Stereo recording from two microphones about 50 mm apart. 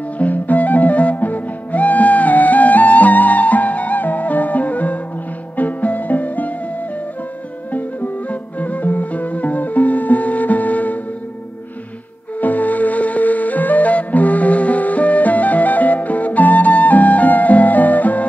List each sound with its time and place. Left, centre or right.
0.2 s music: left
7.7 s music: left
12.4 s flute: left